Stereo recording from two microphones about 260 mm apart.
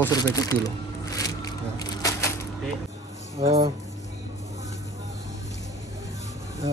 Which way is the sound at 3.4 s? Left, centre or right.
Right.